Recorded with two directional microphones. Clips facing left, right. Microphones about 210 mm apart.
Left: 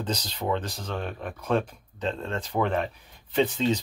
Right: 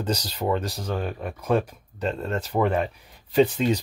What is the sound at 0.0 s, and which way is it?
Speech, 10° right (ahead or behind).